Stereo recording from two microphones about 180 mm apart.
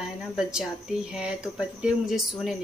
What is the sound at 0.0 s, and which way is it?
A woman's voice, 5° right (ahead or behind).